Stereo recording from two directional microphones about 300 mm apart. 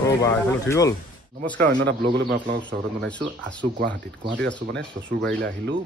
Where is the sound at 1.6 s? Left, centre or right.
Right.